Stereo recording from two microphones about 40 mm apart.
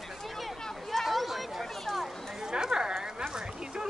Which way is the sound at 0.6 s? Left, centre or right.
Centre.